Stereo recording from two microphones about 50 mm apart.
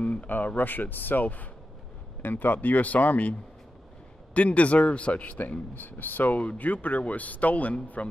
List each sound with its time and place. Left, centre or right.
0.0 s a man's voice: left